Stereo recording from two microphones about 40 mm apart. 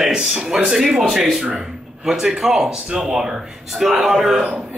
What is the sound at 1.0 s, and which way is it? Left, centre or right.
Speech, centre.